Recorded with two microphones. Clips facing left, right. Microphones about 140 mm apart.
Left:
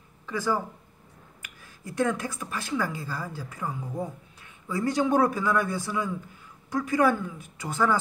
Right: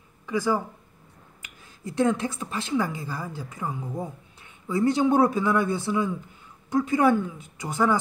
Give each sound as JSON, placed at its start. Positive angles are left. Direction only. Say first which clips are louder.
{"t": 0.3, "sound": "a man's voice", "louder": "right 3 dB", "side_deg": -15}